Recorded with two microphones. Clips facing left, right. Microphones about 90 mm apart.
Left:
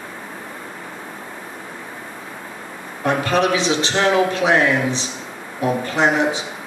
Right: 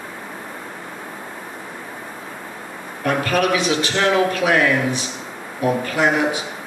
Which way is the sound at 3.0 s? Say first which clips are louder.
Left 1 dB; 25° left (ahead or behind).